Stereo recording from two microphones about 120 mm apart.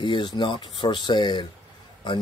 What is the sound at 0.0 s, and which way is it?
Speech, 40° left (ahead or behind).